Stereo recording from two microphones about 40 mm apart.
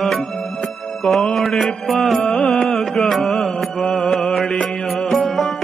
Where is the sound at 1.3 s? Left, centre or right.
Centre.